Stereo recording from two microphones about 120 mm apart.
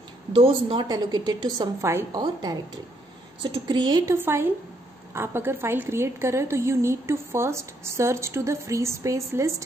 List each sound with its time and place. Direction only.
0.3 s a woman's voice: 45° right (ahead or behind)
0.8 s a woman's voice: 35° right (ahead or behind)
2.1 s a woman's voice: 35° right (ahead or behind)
4.0 s a woman's voice: 20° right (ahead or behind)